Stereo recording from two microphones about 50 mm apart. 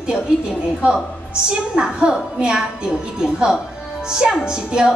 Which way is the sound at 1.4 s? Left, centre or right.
Centre.